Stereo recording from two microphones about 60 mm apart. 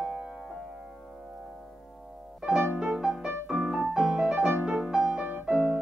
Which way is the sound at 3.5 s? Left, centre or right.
Right.